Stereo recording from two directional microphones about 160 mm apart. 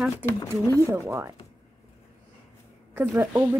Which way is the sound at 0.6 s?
20° left (ahead or behind).